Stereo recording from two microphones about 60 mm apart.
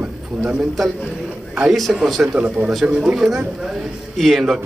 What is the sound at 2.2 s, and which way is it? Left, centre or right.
Speech, centre.